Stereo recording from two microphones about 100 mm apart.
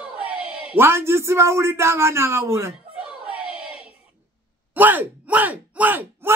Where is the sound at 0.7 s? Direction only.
25° right (ahead or behind).